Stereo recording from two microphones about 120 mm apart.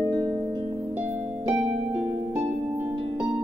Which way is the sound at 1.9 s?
15° right (ahead or behind).